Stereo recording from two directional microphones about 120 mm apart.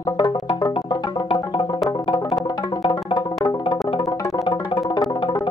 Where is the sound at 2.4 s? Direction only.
35° left (ahead or behind).